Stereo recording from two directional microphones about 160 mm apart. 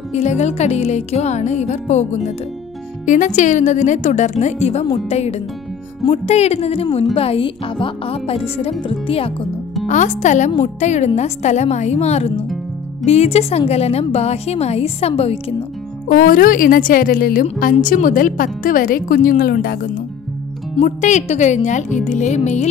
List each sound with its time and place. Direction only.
0.1 s a woman's voice: 45° left (ahead or behind)
9.8 s a woman's voice: 50° left (ahead or behind)
16.1 s a woman's voice: 65° left (ahead or behind)
20.7 s a woman's voice: 45° left (ahead or behind)